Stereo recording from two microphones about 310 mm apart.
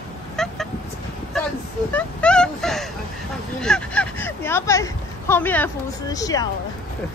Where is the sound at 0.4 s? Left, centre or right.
Centre.